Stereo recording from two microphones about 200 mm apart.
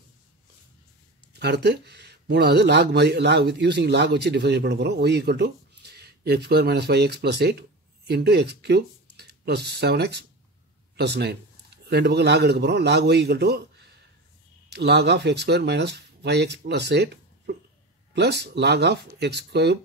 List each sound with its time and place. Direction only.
1.3 s a man's voice: 55° right (ahead or behind)